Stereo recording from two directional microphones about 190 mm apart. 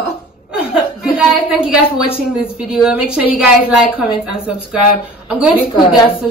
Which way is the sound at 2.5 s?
5° right (ahead or behind).